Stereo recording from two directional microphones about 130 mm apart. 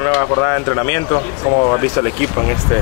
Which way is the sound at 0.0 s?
25° left (ahead or behind).